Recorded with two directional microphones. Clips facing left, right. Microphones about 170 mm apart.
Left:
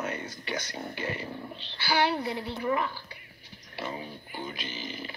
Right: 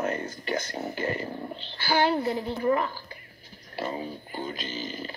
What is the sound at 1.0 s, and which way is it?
A woman's voice, 45° right (ahead or behind).